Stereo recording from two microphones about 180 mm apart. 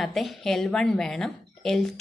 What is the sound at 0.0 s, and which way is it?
A woman's voice, centre (ahead or behind).